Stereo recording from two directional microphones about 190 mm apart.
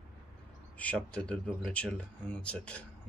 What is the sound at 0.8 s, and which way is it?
Speech, 5° left (ahead or behind).